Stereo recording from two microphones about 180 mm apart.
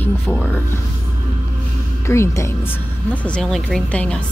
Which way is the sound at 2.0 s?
15° left (ahead or behind).